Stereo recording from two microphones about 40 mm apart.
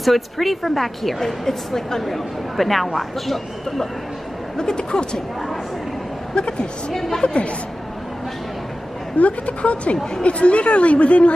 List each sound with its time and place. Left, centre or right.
0.0 s a woman's voice: centre
4.6 s speech: centre
6.3 s speech: left
6.9 s a woman's voice: centre
9.2 s a woman's voice: left